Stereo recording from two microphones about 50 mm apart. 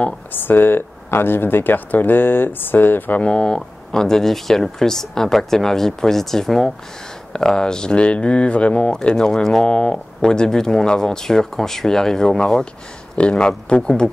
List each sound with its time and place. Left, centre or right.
0.3 s speech: left
3.2 s speech: centre